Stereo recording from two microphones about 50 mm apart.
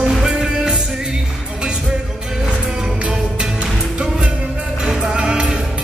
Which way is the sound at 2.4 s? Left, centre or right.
Centre.